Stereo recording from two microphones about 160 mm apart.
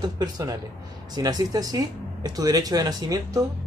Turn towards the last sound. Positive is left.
turn(degrees=-25)  # may be behind; listen again after turning